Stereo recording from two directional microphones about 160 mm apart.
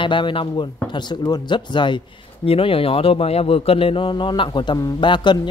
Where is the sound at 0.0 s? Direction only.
30° left (ahead or behind).